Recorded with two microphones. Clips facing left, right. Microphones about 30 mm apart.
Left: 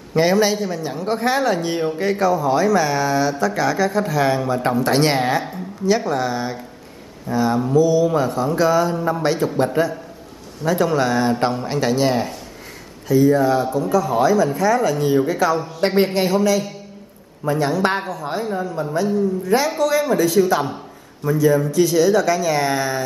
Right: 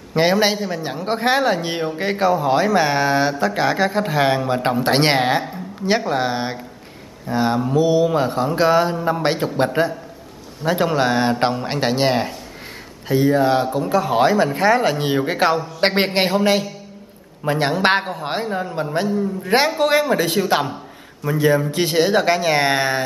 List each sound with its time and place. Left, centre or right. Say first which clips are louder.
0.1 s speech: even; right